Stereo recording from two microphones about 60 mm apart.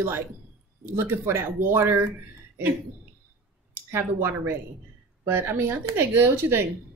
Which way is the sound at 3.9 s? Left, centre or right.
Right.